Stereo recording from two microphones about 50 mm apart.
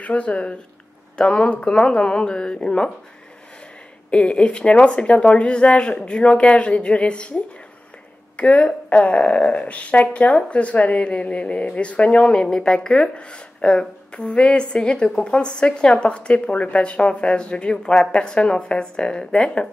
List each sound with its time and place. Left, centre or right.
0.0 s speech: left
4.1 s speech: left
8.4 s speech: left